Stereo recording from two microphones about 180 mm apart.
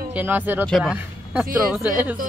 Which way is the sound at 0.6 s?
Centre (ahead or behind).